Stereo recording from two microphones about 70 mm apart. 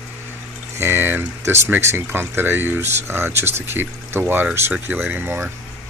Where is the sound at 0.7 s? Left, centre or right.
Right.